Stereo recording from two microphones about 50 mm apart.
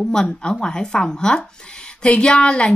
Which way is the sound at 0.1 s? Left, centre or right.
Centre.